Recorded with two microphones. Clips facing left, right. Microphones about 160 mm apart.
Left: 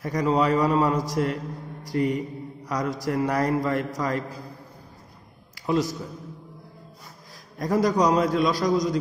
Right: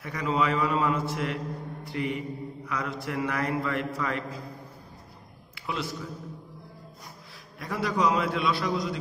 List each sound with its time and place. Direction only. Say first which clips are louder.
0.0 s mantra: left 5 dB; 40° left (ahead or behind)
5.5 s a sound: left 9 dB; 40° left (ahead or behind)
7.5 s mantra: left 7 dB; 40° left (ahead or behind)